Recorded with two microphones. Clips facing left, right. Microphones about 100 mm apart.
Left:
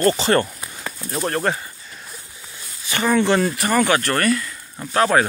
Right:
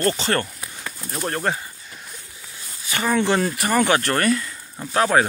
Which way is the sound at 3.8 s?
25° right (ahead or behind).